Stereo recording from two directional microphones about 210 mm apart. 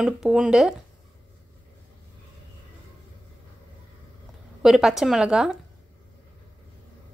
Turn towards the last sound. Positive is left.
turn(degrees=-5)  # may be behind; listen again after turning